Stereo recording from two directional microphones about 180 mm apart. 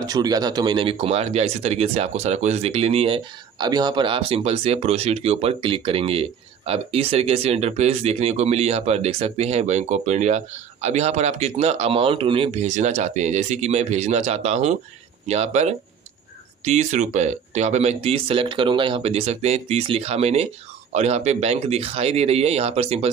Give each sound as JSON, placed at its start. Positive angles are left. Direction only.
{"t": 0.0, "sound": "speech", "side_deg": -20}